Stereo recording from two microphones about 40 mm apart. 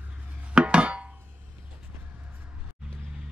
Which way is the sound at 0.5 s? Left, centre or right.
Right.